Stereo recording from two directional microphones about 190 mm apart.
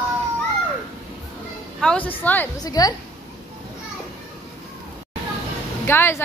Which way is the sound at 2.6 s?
20° left (ahead or behind).